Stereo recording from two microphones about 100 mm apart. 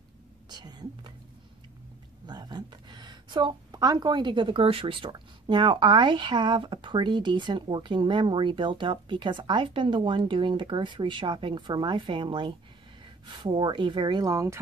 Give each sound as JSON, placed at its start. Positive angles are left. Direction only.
{"t": 0.5, "sound": "speech", "side_deg": -45}
{"t": 2.2, "sound": "a woman's voice", "side_deg": -45}